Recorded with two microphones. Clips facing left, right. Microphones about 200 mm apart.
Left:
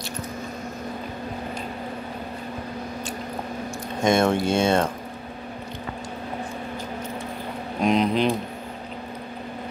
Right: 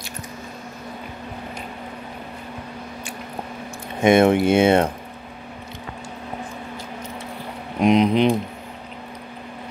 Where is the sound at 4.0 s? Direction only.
60° right (ahead or behind).